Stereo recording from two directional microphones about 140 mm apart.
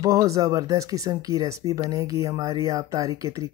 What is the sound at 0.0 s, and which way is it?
Speech, 25° right (ahead or behind).